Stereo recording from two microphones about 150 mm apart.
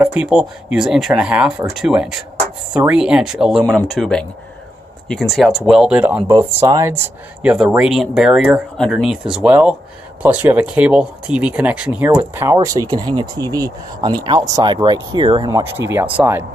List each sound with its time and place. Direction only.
0.0 s speech: 5° right (ahead or behind)
6.2 s speech: 20° right (ahead or behind)
7.4 s speech: 5° right (ahead or behind)
12.5 s speech: 30° right (ahead or behind)
15.6 s speech: 15° right (ahead or behind)